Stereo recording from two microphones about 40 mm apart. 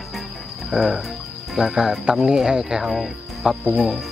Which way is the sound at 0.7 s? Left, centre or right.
Centre.